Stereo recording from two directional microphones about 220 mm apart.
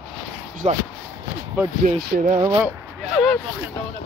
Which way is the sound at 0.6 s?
30° right (ahead or behind).